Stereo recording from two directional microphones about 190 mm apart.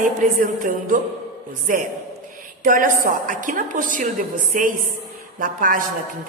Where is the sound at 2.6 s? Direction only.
45° right (ahead or behind).